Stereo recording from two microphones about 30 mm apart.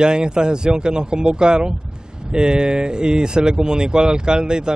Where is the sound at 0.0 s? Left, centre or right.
Right.